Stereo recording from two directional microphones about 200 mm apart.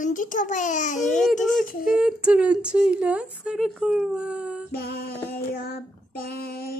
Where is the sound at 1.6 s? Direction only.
45° left (ahead or behind).